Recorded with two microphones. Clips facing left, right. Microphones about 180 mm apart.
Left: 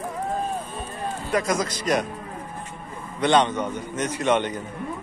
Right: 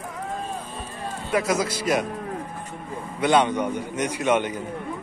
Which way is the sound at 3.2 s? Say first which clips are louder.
Even; 10° right (ahead or behind).